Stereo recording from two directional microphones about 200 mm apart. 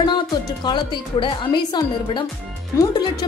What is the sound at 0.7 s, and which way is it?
A woman's voice, 25° left (ahead or behind).